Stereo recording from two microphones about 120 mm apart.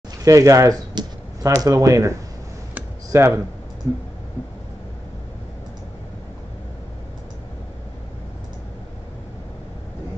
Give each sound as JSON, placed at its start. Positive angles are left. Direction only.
{"t": 0.2, "sound": "speech", "side_deg": -25}